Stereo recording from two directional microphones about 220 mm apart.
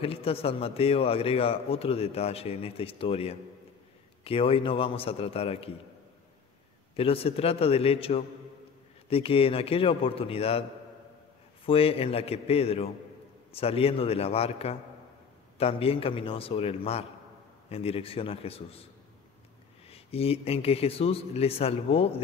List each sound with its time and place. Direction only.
0.0 s speech: 25° left (ahead or behind)
7.0 s speech: 25° left (ahead or behind)
11.6 s speech: 25° left (ahead or behind)
19.9 s speech: 25° left (ahead or behind)